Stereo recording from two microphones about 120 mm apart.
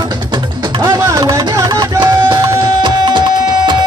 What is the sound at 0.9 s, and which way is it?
Music, 25° right (ahead or behind).